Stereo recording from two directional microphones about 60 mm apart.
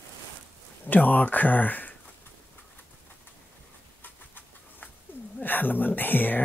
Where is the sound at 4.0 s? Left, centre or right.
Left.